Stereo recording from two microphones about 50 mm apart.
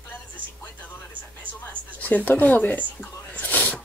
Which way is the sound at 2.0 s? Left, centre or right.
Left.